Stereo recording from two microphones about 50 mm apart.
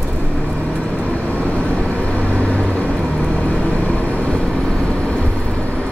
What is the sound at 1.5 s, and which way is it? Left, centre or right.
Vehicle, left.